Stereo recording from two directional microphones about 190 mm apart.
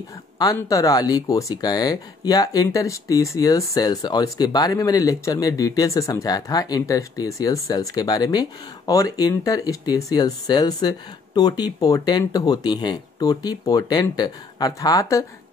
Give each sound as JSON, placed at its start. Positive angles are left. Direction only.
{"t": 0.4, "sound": "speech", "side_deg": 20}